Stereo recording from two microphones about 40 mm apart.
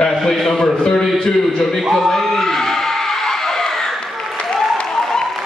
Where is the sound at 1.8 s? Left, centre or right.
Centre.